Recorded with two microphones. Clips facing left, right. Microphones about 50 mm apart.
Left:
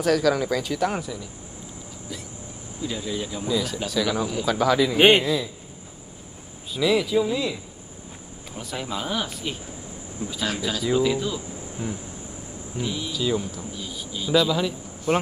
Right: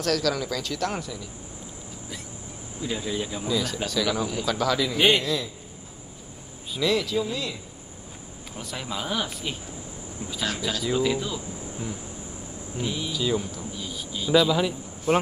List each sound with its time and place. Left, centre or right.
0.0 s speech: centre
2.8 s speech: centre
3.4 s speech: centre
4.9 s a man's voice: left
6.7 s speech: centre
8.5 s speech: centre
12.7 s speech: centre